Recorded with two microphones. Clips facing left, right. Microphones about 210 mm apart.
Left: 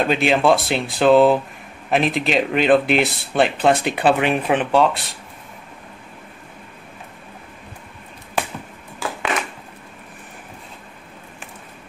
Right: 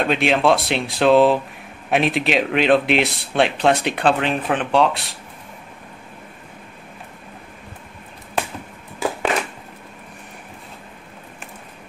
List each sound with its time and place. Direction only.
0.0 s speech: centre (ahead or behind)